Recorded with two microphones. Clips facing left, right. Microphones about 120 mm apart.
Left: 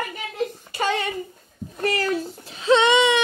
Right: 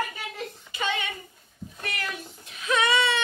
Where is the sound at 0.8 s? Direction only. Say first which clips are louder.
Left 6 dB; 40° left (ahead or behind); by 3.2 s 20° left (ahead or behind).